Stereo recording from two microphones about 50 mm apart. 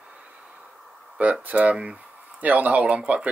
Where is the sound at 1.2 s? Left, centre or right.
Right.